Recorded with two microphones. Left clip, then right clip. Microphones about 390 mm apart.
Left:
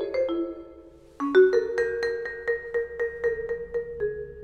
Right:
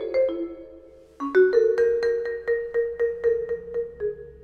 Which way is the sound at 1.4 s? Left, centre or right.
Centre.